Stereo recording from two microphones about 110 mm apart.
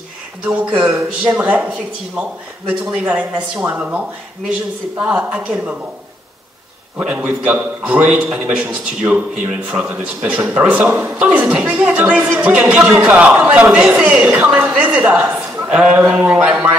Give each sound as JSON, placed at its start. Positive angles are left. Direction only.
{"t": 1.2, "sound": "a man's voice", "side_deg": -10}
{"t": 5.0, "sound": "a man's voice", "side_deg": -10}
{"t": 7.0, "sound": "a man's voice", "side_deg": -15}
{"t": 11.1, "sound": "a man's voice", "side_deg": -10}